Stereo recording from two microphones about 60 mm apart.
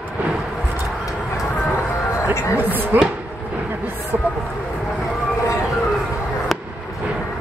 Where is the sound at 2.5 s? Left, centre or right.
Right.